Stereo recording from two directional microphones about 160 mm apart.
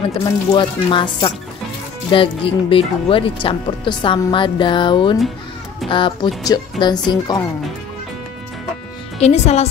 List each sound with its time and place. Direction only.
0.1 s speech: 30° left (ahead or behind)
9.2 s speech: 40° left (ahead or behind)